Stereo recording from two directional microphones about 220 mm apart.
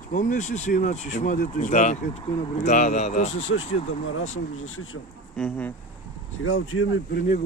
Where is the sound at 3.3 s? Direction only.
60° left (ahead or behind).